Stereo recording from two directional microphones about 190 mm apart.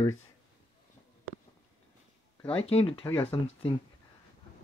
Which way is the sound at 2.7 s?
30° left (ahead or behind).